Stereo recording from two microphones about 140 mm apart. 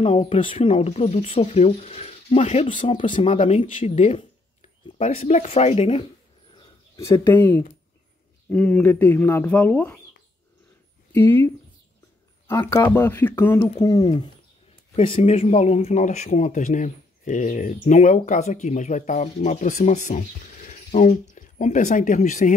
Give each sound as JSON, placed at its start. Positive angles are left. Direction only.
{"t": 0.0, "sound": "speech", "side_deg": 40}
{"t": 7.0, "sound": "speech", "side_deg": 20}
{"t": 11.1, "sound": "speech", "side_deg": 20}
{"t": 13.8, "sound": "speech", "side_deg": 30}
{"t": 15.0, "sound": "speech", "side_deg": 45}